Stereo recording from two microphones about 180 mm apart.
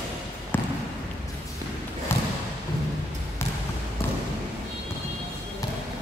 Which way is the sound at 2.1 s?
15° left (ahead or behind).